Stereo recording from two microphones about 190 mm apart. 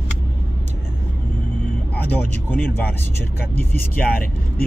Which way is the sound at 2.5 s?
10° left (ahead or behind).